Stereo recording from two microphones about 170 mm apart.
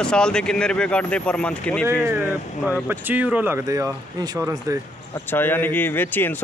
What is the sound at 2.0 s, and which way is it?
Speech, 15° right (ahead or behind).